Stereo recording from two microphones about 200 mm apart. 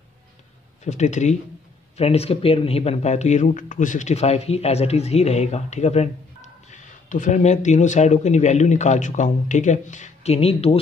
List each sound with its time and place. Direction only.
0.8 s speech: 35° left (ahead or behind)